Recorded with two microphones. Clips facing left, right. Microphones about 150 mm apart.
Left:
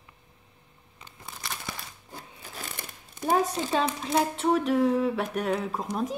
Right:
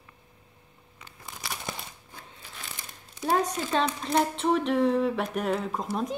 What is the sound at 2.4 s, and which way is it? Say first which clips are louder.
Crumpling: left 4 dB; 50° left (ahead or behind).